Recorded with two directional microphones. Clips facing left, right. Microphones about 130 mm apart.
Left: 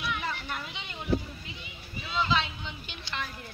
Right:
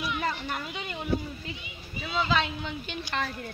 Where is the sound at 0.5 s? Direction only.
45° right (ahead or behind).